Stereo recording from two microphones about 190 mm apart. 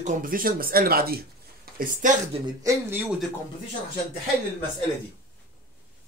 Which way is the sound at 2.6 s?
10° right (ahead or behind).